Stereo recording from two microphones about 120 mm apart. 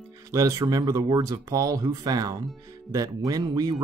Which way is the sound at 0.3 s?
30° right (ahead or behind).